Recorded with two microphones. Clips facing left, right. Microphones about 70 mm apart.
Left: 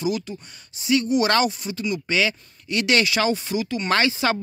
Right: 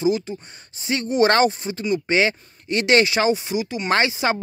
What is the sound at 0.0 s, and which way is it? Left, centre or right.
Speech, right.